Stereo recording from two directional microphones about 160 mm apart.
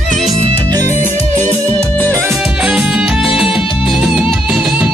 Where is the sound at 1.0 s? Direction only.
50° right (ahead or behind).